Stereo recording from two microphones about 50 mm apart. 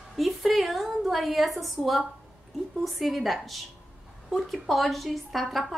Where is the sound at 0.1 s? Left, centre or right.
Centre.